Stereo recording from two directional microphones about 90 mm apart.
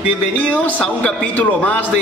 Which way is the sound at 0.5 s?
10° left (ahead or behind).